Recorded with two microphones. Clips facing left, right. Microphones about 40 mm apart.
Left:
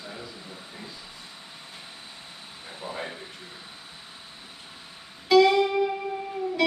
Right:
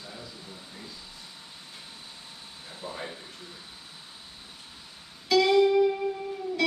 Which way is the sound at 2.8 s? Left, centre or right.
Left.